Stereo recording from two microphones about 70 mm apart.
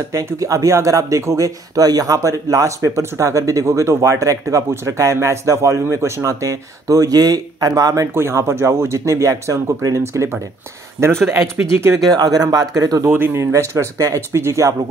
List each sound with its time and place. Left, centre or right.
0.1 s speech: right
8.1 s speech: right
12.1 s speech: right
13.1 s speech: right